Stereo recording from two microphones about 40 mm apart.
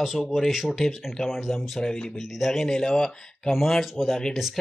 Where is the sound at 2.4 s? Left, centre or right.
Centre.